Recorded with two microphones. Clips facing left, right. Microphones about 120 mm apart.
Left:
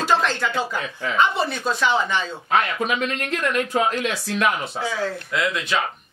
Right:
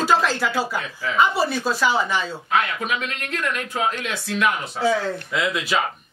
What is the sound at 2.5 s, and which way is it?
Speech, 35° left (ahead or behind).